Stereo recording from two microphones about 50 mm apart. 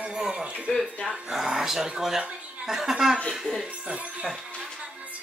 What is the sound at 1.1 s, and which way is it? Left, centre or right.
Speech, centre.